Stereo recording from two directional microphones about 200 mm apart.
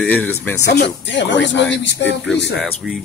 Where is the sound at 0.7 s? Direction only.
60° left (ahead or behind).